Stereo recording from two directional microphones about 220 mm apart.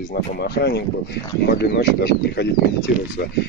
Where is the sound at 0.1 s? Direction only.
45° left (ahead or behind).